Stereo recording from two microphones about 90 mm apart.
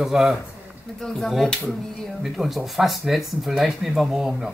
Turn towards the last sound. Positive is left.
turn(degrees=-5)  # may be behind; listen again after turning